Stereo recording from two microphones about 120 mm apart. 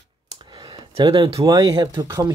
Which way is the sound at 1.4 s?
35° right (ahead or behind).